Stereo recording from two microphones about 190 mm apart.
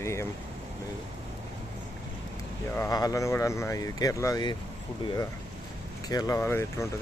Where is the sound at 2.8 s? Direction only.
20° left (ahead or behind).